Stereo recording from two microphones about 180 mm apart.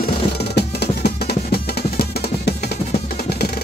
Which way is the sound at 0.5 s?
65° left (ahead or behind).